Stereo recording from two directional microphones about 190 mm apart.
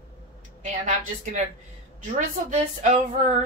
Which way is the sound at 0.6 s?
40° right (ahead or behind).